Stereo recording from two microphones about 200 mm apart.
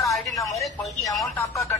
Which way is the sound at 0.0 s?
15° left (ahead or behind).